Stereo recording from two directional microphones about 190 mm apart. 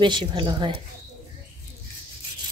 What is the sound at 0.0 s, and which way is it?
Speech, 25° right (ahead or behind).